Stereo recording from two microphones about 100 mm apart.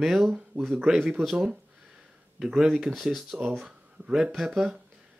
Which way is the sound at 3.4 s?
20° right (ahead or behind).